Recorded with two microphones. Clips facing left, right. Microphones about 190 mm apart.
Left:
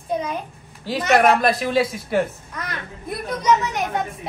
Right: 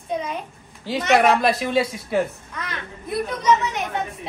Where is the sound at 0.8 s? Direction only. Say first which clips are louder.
Left 1 dB; centre (ahead or behind).